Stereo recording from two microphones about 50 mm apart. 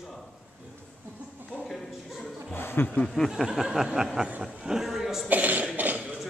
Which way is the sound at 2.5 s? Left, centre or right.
Left.